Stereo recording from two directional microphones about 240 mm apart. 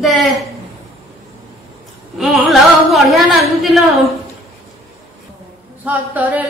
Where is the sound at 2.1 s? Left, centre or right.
Centre.